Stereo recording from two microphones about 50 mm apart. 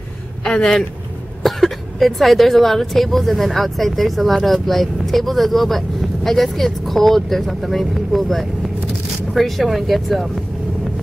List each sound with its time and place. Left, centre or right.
0.4 s speech: centre